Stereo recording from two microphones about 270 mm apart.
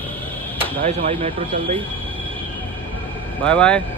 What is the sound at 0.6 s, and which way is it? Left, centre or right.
Speech, right.